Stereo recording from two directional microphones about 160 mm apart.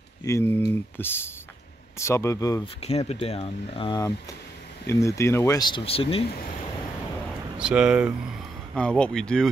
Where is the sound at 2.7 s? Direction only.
40° left (ahead or behind).